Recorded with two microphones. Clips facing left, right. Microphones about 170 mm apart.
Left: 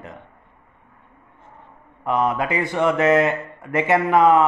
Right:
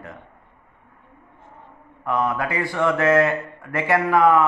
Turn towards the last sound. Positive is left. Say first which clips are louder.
# left 1 dB
turn(degrees=20)  # may be behind; listen again after turning